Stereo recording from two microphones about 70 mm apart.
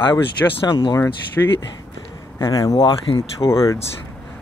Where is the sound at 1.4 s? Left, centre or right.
Left.